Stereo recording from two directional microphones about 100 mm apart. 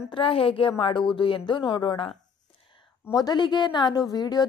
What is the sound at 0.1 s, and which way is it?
A woman's voice, 65° left (ahead or behind).